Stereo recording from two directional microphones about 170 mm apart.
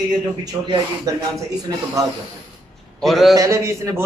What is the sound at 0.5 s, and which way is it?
Speech, 20° right (ahead or behind).